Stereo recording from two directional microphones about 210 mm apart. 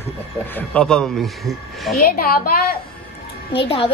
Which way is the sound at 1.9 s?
45° left (ahead or behind).